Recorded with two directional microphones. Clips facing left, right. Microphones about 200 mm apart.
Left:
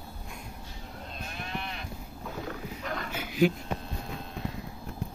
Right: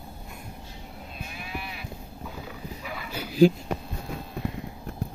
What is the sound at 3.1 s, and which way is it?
Dog, 35° right (ahead or behind).